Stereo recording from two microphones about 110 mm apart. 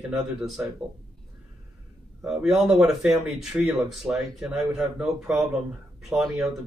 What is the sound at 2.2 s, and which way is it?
Speech, 5° right (ahead or behind).